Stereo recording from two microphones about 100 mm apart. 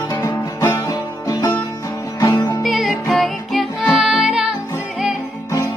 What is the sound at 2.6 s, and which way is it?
Music, centre (ahead or behind).